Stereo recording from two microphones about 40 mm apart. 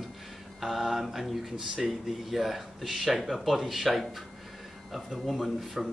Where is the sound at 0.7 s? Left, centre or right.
Centre.